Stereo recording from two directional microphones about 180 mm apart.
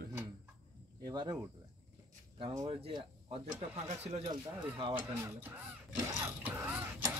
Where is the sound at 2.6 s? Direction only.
25° right (ahead or behind).